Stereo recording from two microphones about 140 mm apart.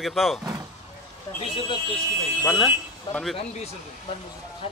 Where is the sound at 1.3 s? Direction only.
40° left (ahead or behind).